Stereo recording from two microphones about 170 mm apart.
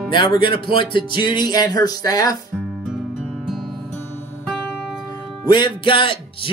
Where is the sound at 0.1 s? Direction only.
30° left (ahead or behind).